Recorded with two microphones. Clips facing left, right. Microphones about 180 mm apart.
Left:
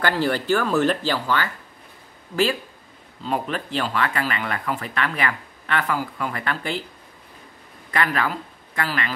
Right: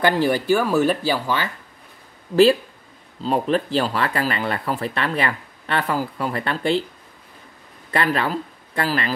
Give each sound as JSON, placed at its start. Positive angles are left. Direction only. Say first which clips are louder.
{"t": 0.0, "sound": "speech", "louder": "right 3 dB", "side_deg": -15}
{"t": 3.2, "sound": "speech", "louder": "right 6 dB", "side_deg": -35}
{"t": 7.9, "sound": "speech", "louder": "right 2 dB", "side_deg": -30}